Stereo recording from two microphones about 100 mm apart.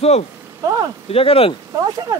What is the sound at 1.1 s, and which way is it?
Speech, 75° left (ahead or behind).